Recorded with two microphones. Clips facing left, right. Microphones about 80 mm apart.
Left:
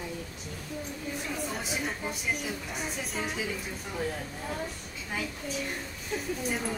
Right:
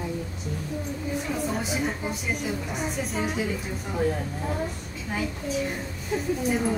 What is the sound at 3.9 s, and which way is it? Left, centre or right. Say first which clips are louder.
A woman's voice: right 8 dB; centre.